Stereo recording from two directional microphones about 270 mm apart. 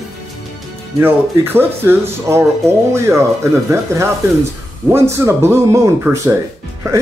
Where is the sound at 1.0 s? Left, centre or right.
Centre.